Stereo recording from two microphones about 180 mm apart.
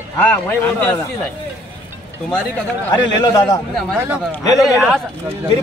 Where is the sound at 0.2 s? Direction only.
10° left (ahead or behind).